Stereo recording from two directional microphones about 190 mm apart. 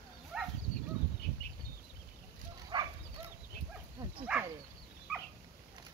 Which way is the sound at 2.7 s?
20° right (ahead or behind).